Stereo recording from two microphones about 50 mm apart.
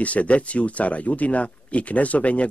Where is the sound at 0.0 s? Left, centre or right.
Left.